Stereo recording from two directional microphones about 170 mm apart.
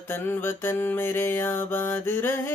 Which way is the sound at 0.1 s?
15° left (ahead or behind).